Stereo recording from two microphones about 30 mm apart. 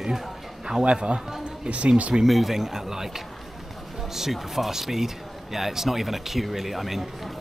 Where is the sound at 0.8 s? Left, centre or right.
Right.